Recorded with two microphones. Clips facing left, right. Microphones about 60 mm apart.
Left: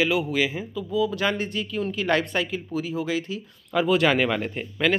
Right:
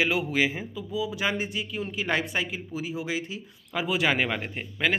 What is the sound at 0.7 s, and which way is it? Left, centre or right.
Speech, centre.